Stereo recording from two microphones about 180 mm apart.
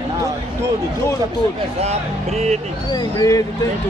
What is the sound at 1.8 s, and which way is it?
Speech, 35° right (ahead or behind).